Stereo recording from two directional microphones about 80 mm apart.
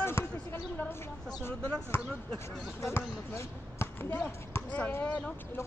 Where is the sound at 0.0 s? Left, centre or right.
Left.